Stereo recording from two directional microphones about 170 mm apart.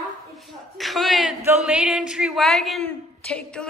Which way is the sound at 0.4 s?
Centre (ahead or behind).